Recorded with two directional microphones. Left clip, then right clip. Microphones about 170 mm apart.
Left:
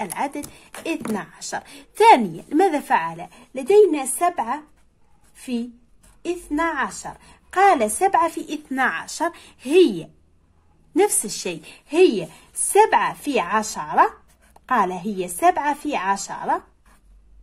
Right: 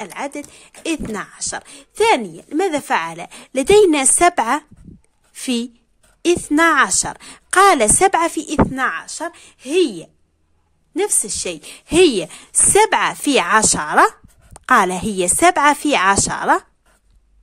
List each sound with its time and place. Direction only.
0.0 s a woman's voice: 25° right (ahead or behind); by 4.6 s 65° right (ahead or behind)
6.2 s a woman's voice: 55° right (ahead or behind)
8.7 s a woman's voice: 20° right (ahead or behind); by 16.6 s 55° right (ahead or behind)